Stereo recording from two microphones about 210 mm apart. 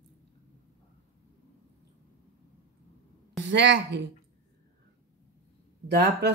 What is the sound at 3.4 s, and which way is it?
Speech, 55° right (ahead or behind).